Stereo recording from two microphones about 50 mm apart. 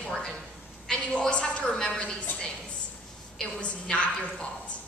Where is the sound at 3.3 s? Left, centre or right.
Left.